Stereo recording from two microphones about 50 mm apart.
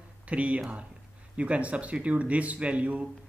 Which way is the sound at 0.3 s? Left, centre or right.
Right.